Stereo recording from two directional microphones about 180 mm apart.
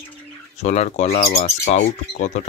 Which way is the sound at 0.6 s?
40° left (ahead or behind).